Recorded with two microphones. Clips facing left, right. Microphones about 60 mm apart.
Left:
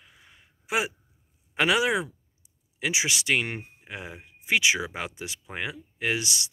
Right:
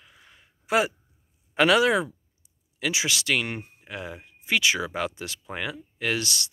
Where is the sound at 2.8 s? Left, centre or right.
Left.